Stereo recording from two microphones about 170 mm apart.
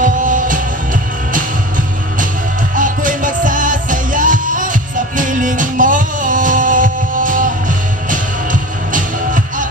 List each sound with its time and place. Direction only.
0.0 s music: 50° right (ahead or behind)
2.7 s music: 50° right (ahead or behind)